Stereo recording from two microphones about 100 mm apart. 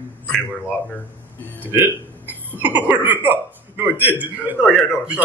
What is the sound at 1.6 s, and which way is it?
A man's voice, 20° right (ahead or behind).